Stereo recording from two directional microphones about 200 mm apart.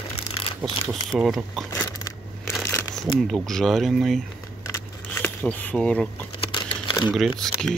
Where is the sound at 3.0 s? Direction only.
Centre (ahead or behind).